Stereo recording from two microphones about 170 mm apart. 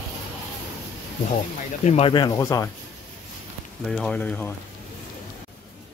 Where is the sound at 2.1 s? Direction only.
25° left (ahead or behind).